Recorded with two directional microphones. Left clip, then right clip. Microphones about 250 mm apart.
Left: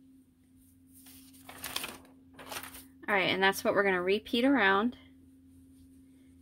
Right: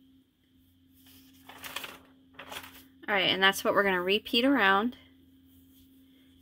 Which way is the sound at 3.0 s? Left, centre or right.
Centre.